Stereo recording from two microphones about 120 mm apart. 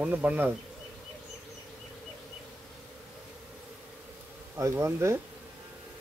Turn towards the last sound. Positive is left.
turn(degrees=-20)  # may be behind; listen again after turning